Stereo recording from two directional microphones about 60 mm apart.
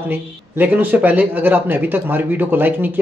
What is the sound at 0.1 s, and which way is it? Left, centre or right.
Speech, right.